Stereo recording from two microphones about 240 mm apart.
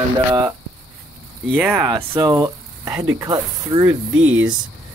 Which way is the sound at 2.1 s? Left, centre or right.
Centre.